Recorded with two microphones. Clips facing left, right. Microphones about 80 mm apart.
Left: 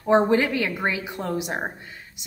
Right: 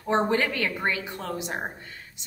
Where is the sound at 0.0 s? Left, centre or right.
Centre.